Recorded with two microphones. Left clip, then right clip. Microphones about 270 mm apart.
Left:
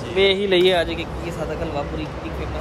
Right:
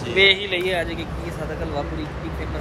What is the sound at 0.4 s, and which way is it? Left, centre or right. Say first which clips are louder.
Speech: left 7 dB; left.